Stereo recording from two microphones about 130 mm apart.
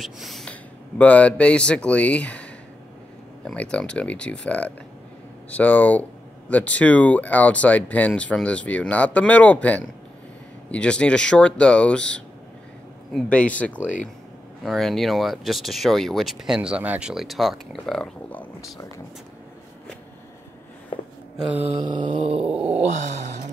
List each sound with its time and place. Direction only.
0.0 s speech: centre (ahead or behind)
3.4 s speech: 10° left (ahead or behind)
21.7 s mantra: 35° right (ahead or behind)
22.5 s wail: 10° right (ahead or behind)
22.8 s a sound: 60° right (ahead or behind)